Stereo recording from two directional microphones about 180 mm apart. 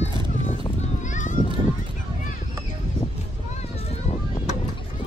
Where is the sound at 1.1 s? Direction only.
45° left (ahead or behind).